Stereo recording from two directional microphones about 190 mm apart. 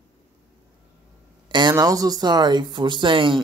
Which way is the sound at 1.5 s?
20° right (ahead or behind).